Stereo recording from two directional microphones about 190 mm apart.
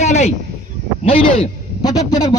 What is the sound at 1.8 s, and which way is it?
Speech, 20° left (ahead or behind).